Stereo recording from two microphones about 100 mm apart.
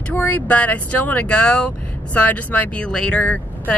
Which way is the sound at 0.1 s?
20° left (ahead or behind).